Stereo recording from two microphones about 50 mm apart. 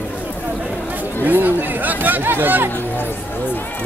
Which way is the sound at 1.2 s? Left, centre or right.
Right.